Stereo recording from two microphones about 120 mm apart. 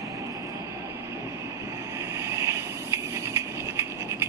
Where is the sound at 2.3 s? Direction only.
25° right (ahead or behind).